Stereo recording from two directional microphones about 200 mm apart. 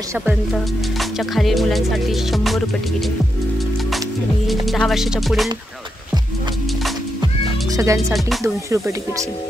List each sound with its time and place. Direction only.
1.3 s music: centre (ahead or behind)
4.5 s music: centre (ahead or behind)
7.7 s speech: 15° right (ahead or behind)
8.1 s music: centre (ahead or behind)
8.6 s speech: 15° right (ahead or behind)